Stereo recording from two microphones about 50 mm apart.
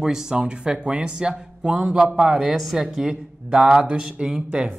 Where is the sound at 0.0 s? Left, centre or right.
Centre.